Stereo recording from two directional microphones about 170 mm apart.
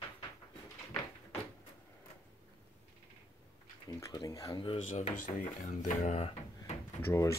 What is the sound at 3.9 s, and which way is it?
Dishes, 20° left (ahead or behind).